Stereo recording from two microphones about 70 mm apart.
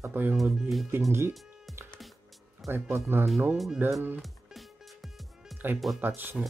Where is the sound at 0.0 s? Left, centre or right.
Right.